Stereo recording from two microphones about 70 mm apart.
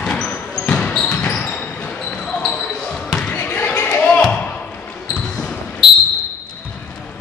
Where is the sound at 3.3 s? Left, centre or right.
Left.